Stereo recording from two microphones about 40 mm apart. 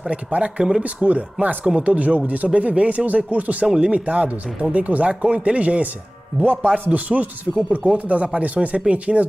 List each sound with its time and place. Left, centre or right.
0.0 s speech: right
3.6 s speech: centre
3.9 s speech: right